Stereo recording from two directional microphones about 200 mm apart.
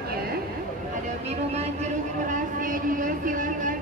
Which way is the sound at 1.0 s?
35° right (ahead or behind).